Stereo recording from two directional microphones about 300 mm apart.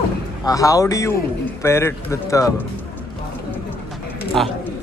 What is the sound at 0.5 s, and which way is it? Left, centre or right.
Speech, centre.